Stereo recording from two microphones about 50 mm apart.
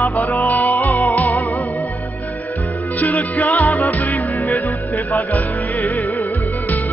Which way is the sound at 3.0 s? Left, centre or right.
Left.